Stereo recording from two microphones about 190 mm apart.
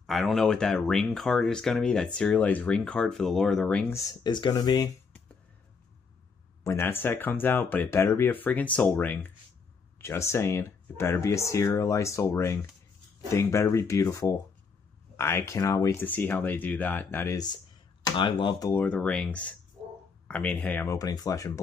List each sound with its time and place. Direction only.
0.0 s speech: centre (ahead or behind)
4.1 s speech: 20° left (ahead or behind)
6.6 s speech: 15° left (ahead or behind)
18.7 s speech: 10° left (ahead or behind)